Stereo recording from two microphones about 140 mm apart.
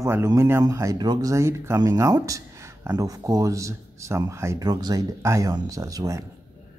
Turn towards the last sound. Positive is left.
turn(degrees=-25)  # may be behind; listen again after turning